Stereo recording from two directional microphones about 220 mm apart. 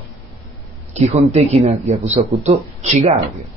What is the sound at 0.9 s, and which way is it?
Speech, 35° right (ahead or behind).